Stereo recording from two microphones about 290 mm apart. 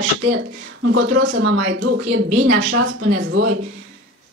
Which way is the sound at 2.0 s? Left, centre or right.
Right.